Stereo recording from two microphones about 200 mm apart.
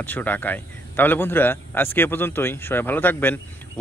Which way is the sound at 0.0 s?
10° left (ahead or behind).